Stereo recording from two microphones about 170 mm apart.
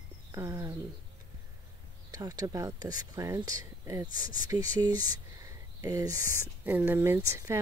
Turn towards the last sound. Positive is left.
turn(degrees=-15)  # may be behind; listen again after turning